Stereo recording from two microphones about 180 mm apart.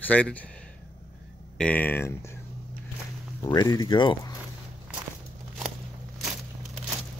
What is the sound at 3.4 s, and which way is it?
Speech, 20° left (ahead or behind).